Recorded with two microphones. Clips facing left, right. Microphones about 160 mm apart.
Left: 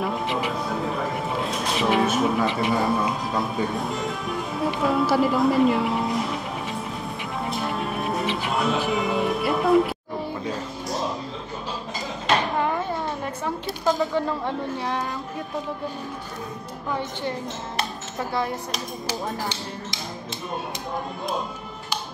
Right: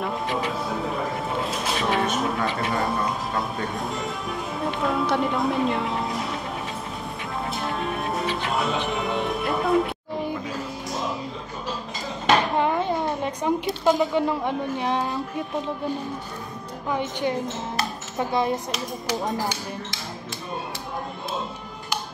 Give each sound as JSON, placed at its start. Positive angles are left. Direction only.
{"t": 0.3, "sound": "music", "side_deg": 5}
{"t": 2.4, "sound": "speech", "side_deg": 10}
{"t": 7.4, "sound": "music", "side_deg": 0}
{"t": 12.5, "sound": "a sound", "side_deg": -20}
{"t": 16.9, "sound": "speech", "side_deg": -15}
{"t": 18.3, "sound": "speech", "side_deg": -20}